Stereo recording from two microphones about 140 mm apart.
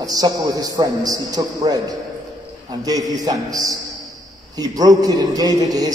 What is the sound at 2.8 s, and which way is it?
A man's voice, 25° right (ahead or behind).